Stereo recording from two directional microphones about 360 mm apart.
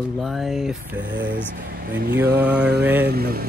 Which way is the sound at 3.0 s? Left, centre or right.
Right.